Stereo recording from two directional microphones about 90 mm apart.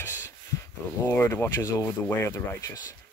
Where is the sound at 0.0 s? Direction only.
30° left (ahead or behind).